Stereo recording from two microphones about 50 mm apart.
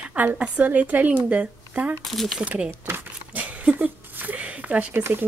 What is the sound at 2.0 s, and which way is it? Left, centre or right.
Speech, centre.